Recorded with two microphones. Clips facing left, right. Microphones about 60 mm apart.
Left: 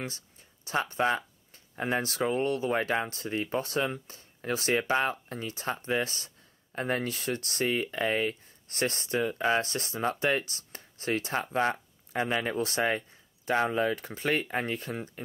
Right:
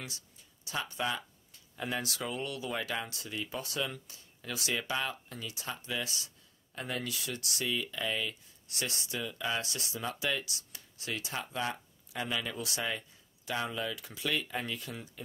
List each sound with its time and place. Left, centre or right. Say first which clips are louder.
0.0 s speech: left 7 dB; left